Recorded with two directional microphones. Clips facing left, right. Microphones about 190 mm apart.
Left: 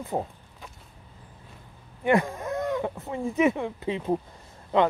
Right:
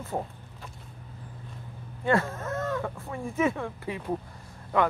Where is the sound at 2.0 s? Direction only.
15° left (ahead or behind).